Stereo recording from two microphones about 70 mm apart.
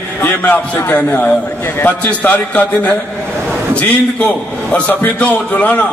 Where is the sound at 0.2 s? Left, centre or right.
Left.